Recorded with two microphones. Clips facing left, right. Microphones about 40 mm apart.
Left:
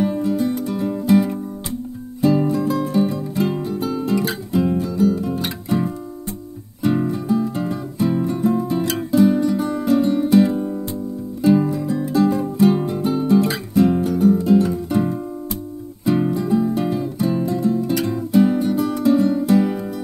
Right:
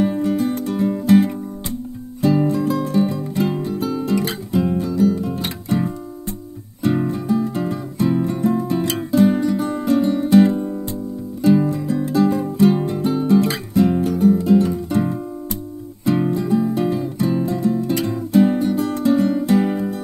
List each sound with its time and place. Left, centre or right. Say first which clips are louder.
0.7 s music: right 2 dB; centre
2.2 s music: even; centre